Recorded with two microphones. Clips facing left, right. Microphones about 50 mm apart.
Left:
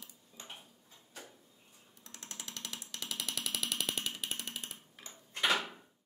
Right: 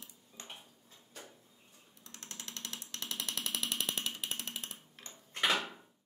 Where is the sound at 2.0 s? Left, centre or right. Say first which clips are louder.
Even; left.